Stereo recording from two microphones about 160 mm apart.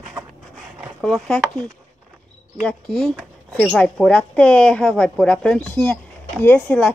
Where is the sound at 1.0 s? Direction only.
5° left (ahead or behind).